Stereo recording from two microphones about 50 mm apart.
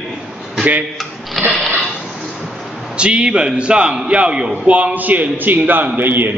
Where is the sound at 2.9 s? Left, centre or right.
Right.